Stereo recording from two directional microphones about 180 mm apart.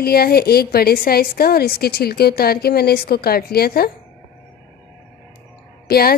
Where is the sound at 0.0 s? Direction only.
60° left (ahead or behind).